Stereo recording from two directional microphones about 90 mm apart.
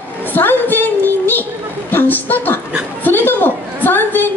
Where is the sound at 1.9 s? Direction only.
20° left (ahead or behind).